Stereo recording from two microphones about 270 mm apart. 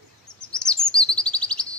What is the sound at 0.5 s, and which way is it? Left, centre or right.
Chirp, centre.